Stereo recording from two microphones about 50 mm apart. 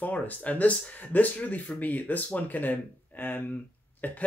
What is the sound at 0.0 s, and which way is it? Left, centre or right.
Speech, left.